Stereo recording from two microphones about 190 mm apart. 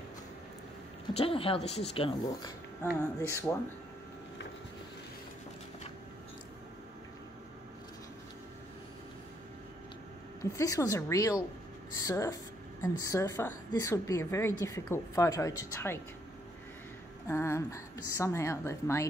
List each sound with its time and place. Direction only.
1.1 s speech: 30° left (ahead or behind)
3.2 s speech: 15° left (ahead or behind)
10.4 s speech: 15° left (ahead or behind)
17.3 s speech: 15° left (ahead or behind)